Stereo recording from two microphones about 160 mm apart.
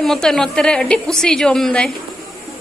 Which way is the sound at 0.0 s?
Centre (ahead or behind).